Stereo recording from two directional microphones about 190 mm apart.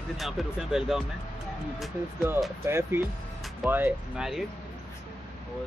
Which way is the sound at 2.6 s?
10° right (ahead or behind).